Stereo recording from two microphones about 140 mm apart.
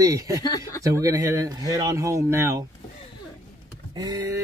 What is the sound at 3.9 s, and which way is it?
Speech, 25° right (ahead or behind).